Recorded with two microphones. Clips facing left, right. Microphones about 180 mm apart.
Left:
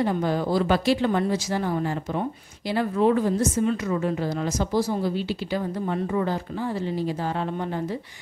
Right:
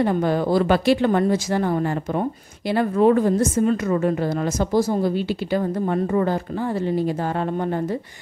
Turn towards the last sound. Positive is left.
turn(degrees=-50)  # may be behind; listen again after turning